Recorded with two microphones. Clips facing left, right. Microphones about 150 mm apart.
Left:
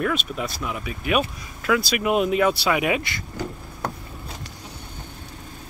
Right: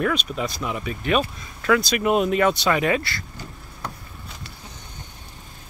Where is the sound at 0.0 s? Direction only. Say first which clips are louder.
Right 1 dB; centre (ahead or behind); by 3.3 s 20° left (ahead or behind).